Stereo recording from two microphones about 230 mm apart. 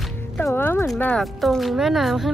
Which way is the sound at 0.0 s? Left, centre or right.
Centre.